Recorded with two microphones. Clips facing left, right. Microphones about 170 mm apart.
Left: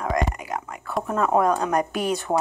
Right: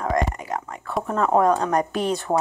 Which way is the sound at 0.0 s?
35° right (ahead or behind).